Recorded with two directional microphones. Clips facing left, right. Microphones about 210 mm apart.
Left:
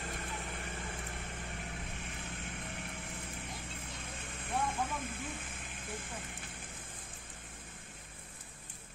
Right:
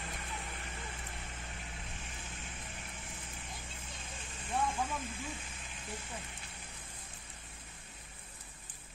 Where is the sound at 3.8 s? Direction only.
60° left (ahead or behind).